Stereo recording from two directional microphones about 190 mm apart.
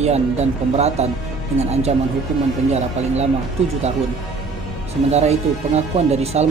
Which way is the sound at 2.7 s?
35° right (ahead or behind).